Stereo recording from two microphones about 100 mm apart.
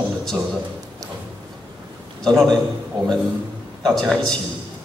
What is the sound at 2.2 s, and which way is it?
Speech, 5° left (ahead or behind).